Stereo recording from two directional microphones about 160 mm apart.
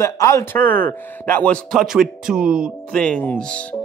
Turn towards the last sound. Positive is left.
turn(degrees=5)  # may be behind; listen again after turning